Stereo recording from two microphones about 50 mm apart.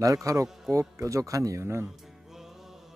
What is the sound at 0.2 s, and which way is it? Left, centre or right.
A man's voice, right.